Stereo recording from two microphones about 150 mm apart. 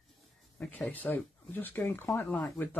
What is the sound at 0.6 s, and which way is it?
Speech, 5° left (ahead or behind).